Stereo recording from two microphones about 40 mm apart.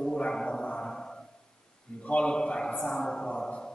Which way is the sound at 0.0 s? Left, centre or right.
Centre.